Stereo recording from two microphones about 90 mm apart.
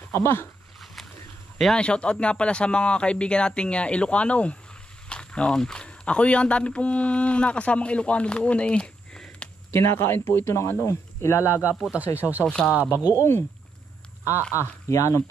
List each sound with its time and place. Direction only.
0.1 s speech: 25° left (ahead or behind)
1.6 s speech: 10° left (ahead or behind)
9.7 s speech: 30° left (ahead or behind)
12.2 s speech: 20° right (ahead or behind)
12.4 s speech: 10° left (ahead or behind)
13.1 s speech: 30° left (ahead or behind)
14.5 s speech: 35° left (ahead or behind)